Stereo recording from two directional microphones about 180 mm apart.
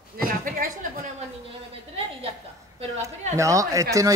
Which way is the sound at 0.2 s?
55° right (ahead or behind).